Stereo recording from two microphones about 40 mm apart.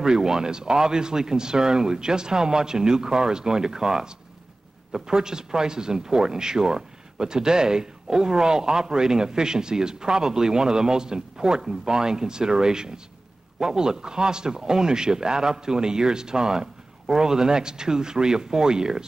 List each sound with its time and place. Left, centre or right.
0.0 s speech: centre